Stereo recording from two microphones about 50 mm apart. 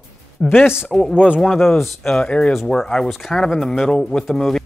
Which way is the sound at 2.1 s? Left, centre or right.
Centre.